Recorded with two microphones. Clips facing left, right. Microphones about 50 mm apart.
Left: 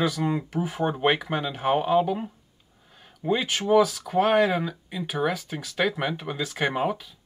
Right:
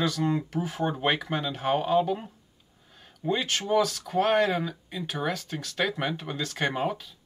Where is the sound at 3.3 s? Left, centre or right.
Centre.